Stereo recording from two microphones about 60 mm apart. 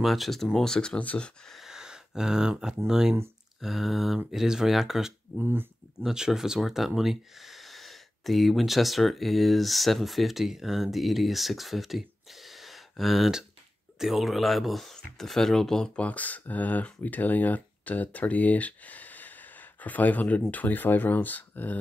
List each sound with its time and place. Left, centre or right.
0.0 s speech: centre
0.9 s speech: left
1.5 s a sound: centre
2.9 s speech: centre
5.4 s speech: right
6.0 s speech: centre
16.0 s speech: left